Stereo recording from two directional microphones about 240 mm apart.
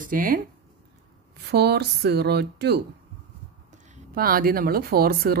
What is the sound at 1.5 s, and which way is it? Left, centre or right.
Speech, right.